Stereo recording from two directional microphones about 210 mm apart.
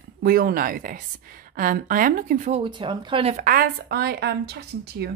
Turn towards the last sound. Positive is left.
turn(degrees=-50)  # may be behind; listen again after turning